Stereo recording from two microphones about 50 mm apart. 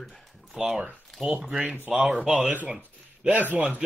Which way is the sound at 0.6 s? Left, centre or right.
Centre.